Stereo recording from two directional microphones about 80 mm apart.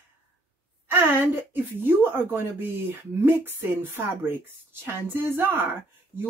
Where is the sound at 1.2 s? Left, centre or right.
Right.